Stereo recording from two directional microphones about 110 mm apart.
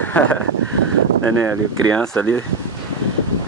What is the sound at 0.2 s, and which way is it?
Speech, 15° left (ahead or behind).